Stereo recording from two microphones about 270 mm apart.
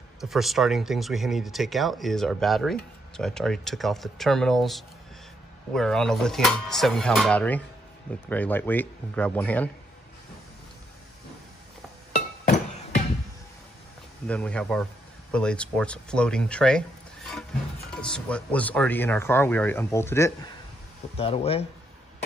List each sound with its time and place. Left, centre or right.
0.2 s speech: centre
12.1 s music: left
14.2 s speech: centre
18.0 s speech: centre
21.2 s speech: left